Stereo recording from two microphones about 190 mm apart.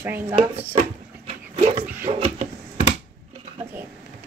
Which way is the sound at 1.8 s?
10° right (ahead or behind).